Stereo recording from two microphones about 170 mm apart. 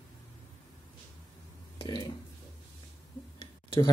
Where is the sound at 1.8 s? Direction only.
30° left (ahead or behind).